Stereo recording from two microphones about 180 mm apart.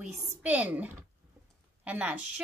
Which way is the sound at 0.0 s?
10° right (ahead or behind).